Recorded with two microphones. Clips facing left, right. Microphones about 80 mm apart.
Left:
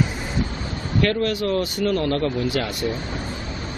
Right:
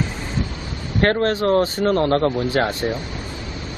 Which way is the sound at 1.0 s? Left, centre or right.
Right.